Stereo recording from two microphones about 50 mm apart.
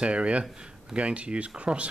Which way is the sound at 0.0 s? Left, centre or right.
Right.